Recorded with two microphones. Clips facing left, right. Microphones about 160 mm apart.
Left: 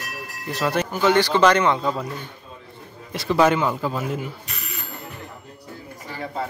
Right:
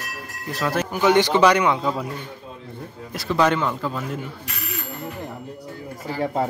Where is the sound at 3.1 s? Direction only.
Centre (ahead or behind).